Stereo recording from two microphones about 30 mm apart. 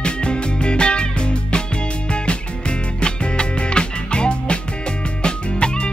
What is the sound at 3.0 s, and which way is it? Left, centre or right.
Music, left.